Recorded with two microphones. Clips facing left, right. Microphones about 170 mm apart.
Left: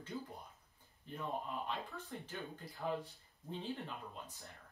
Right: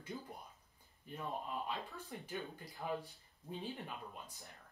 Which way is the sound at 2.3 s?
10° right (ahead or behind).